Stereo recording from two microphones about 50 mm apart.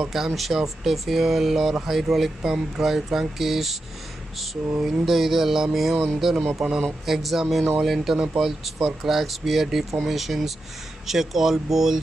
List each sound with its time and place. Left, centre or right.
0.1 s speech: centre
4.7 s speech: centre